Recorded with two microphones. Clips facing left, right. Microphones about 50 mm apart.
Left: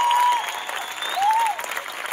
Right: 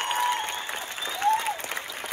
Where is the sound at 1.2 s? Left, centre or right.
Left.